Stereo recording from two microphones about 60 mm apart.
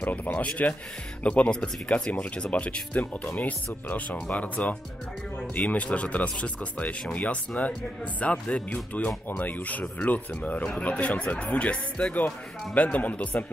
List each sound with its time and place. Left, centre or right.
0.0 s speech: left